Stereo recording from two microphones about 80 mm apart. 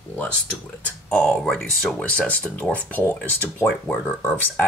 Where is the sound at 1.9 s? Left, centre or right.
Centre.